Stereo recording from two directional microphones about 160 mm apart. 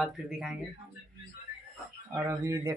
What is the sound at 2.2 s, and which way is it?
Speech, 20° right (ahead or behind).